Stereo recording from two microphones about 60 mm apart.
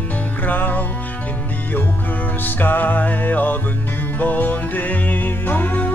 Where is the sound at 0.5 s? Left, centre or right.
Left.